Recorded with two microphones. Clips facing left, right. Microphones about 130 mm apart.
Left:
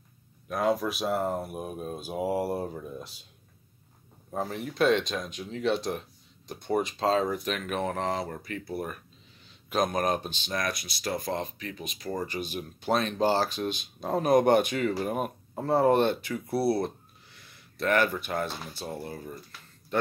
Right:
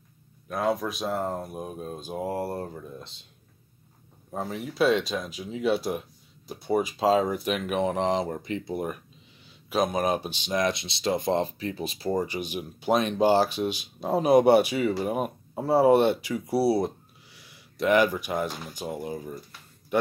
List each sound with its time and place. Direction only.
0.5 s speech: centre (ahead or behind)
4.3 s speech: centre (ahead or behind); by 9.0 s 20° right (ahead or behind)
9.7 s speech: 5° right (ahead or behind); by 12.2 s 30° right (ahead or behind)
12.2 s speech: 15° right (ahead or behind)